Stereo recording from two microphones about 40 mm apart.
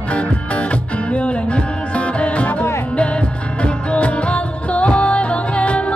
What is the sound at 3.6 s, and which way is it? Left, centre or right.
Music, left.